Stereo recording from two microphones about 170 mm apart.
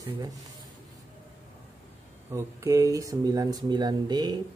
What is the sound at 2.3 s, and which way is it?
Speech, 15° right (ahead or behind).